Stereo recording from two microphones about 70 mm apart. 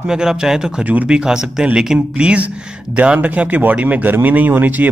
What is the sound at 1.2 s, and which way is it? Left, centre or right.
A man's voice, centre.